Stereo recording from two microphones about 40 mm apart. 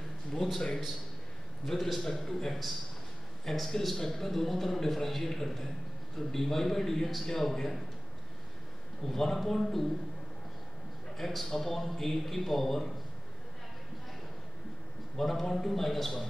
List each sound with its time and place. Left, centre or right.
0.3 s speech: centre
1.7 s a man's voice: centre
9.0 s a man's voice: centre
11.1 s a man's voice: centre
15.1 s a man's voice: centre